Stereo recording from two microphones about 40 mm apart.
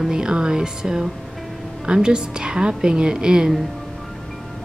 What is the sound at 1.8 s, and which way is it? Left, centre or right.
A woman's voice, right.